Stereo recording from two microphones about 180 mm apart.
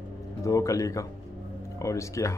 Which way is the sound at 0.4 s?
15° left (ahead or behind).